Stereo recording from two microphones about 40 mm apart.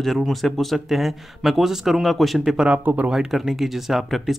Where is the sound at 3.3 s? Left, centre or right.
Centre.